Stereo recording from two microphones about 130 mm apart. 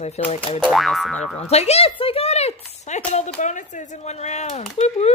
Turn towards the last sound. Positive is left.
turn(degrees=55)  # may be behind; listen again after turning